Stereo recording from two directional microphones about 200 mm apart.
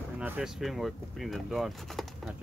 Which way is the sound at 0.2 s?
Centre (ahead or behind).